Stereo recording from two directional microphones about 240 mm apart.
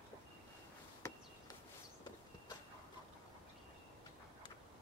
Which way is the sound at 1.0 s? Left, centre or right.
Centre.